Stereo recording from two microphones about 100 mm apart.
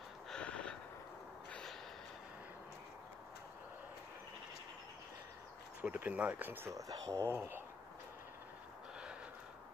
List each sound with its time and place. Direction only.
0.3 s gasp: 10° left (ahead or behind)
1.5 s a sound: 5° left (ahead or behind)
5.8 s speech: 20° right (ahead or behind)
6.7 s speech: 35° right (ahead or behind)